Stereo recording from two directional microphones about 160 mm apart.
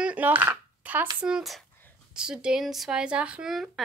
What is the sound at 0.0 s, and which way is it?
Dishes, 10° right (ahead or behind).